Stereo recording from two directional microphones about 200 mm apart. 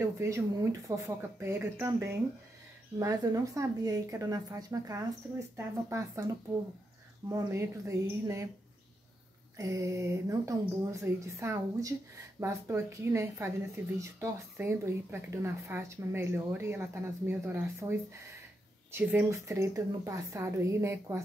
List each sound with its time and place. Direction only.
0.0 s speech: 15° right (ahead or behind)
9.6 s speech: 15° right (ahead or behind)